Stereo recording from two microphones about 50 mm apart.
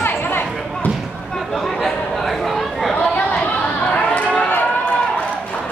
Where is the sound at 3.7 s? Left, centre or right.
Left.